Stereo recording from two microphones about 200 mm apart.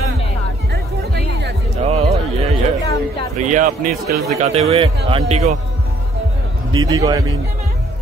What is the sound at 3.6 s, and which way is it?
Speech, 50° right (ahead or behind).